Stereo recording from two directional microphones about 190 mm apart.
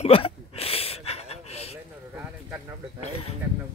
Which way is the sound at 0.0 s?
30° left (ahead or behind).